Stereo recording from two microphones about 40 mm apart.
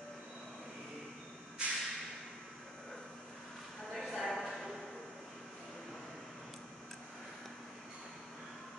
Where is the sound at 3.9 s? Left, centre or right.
Centre.